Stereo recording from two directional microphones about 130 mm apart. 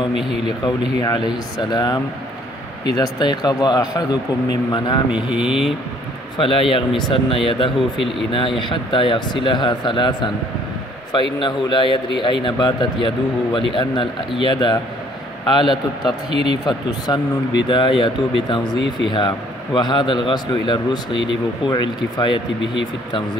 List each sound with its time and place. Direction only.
0.7 s speech: 30° left (ahead or behind)
5.1 s speech: 5° right (ahead or behind)
6.3 s speech: 45° left (ahead or behind)
11.3 s speech: 40° left (ahead or behind)
16.3 s speech: 50° right (ahead or behind)
16.6 s speech: 30° left (ahead or behind)